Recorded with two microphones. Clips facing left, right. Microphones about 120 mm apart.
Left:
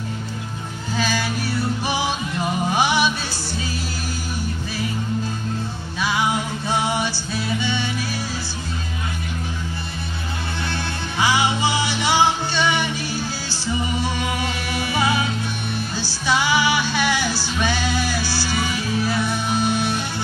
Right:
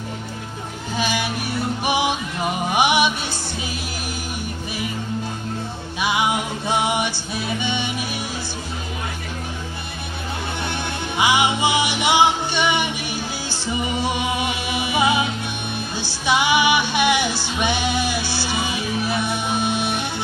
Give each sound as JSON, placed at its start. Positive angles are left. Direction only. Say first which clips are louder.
{"t": 0.9, "sound": "music", "louder": "even", "side_deg": -20}
{"t": 5.9, "sound": "music", "louder": "right 1 dB", "side_deg": -20}
{"t": 10.7, "sound": "music", "louder": "right 1 dB", "side_deg": -20}